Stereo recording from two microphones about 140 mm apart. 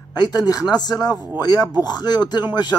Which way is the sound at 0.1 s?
30° left (ahead or behind).